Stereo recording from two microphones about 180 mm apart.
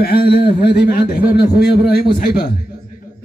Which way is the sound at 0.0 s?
60° left (ahead or behind).